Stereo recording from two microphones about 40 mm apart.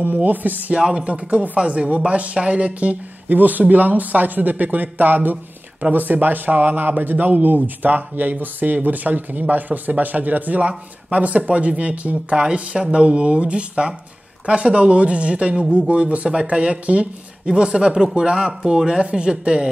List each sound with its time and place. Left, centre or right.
0.0 s speech: right
0.9 s speech: right
12.4 s speech: right